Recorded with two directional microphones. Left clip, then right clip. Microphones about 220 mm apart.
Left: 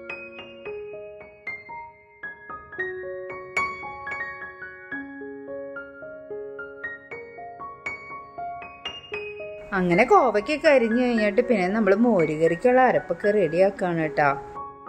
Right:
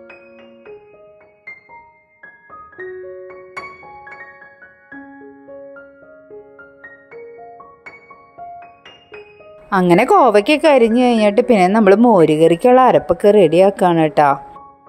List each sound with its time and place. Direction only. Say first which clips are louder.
9.7 s a woman's voice: right 7 dB; 35° right (ahead or behind)